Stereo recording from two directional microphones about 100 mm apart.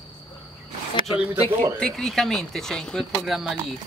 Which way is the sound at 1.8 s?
Centre (ahead or behind).